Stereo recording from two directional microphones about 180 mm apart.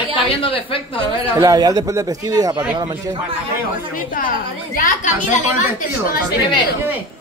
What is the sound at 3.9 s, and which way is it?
Speech, 50° left (ahead or behind).